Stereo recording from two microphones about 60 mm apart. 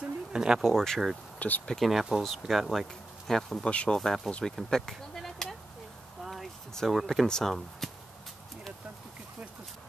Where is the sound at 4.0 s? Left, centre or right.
Centre.